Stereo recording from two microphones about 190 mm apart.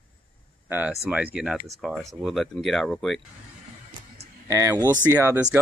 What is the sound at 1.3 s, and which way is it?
Speech, 5° right (ahead or behind).